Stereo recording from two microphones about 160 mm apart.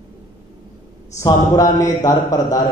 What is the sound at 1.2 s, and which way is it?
A man's voice, 20° left (ahead or behind).